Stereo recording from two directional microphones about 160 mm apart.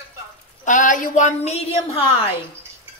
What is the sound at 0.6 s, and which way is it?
Speech, 55° left (ahead or behind).